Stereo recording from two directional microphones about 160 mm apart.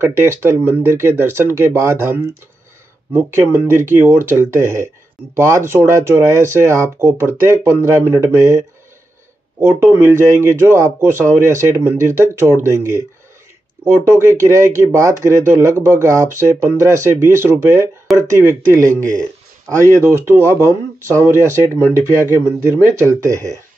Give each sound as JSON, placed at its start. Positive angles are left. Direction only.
{"t": 0.0, "sound": "speech", "side_deg": -15}
{"t": 14.0, "sound": "speech", "side_deg": -15}
{"t": 21.6, "sound": "speech", "side_deg": 15}
{"t": 22.3, "sound": "speech", "side_deg": -15}